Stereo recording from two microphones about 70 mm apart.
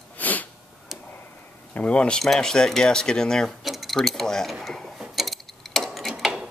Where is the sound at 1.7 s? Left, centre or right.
Left; by 5.0 s centre.